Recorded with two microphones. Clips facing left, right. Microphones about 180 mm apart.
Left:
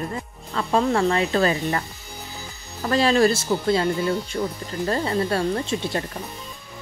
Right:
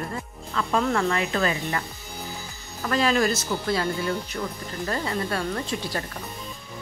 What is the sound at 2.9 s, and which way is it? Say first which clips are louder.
Speech: left 4 dB; 30° left (ahead or behind).